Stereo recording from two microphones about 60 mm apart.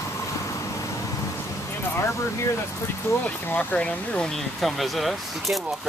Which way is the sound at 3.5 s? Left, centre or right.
Centre.